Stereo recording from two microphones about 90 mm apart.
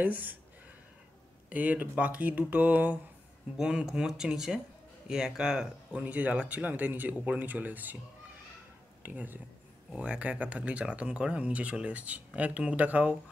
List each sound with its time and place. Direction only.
0.0 s speech: 20° right (ahead or behind)
1.5 s speech: 15° right (ahead or behind)
9.0 s speech: 20° right (ahead or behind)